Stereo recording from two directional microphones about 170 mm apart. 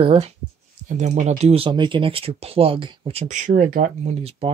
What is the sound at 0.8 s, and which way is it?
Speech, 45° right (ahead or behind).